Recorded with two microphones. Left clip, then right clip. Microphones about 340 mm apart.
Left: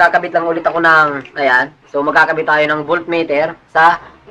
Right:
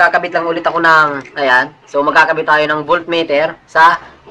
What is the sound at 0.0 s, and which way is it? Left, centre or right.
A man's voice, centre.